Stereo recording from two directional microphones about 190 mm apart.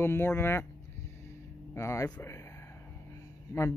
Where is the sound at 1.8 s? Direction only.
15° left (ahead or behind).